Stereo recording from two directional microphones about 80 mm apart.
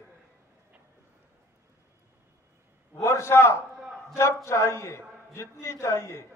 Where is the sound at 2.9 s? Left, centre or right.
Left.